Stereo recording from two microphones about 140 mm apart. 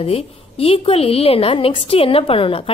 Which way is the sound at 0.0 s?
45° left (ahead or behind).